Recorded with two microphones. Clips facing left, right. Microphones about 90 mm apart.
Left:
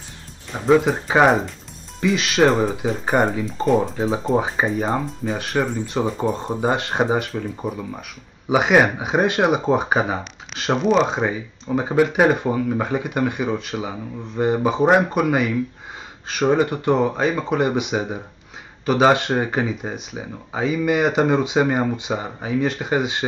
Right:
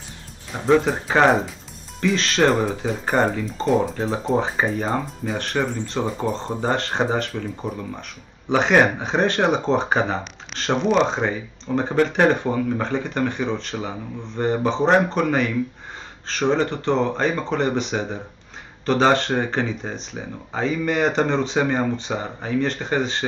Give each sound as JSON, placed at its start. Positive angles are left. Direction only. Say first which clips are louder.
{"t": 0.5, "sound": "speech", "louder": "left 2 dB", "side_deg": 5}